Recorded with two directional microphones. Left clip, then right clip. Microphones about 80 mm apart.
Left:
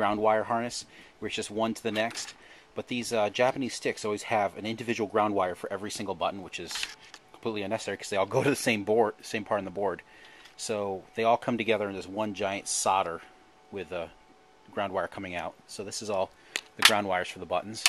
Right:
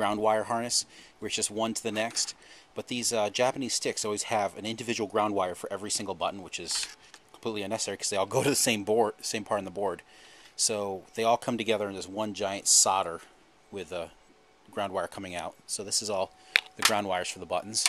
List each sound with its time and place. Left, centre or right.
0.0 s speech: right; by 7.2 s centre
7.4 s a man's voice: centre